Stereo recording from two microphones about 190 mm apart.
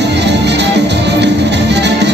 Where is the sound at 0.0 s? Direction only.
65° right (ahead or behind).